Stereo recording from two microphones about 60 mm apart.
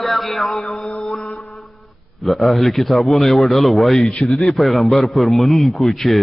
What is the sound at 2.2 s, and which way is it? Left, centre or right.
A man's voice, centre.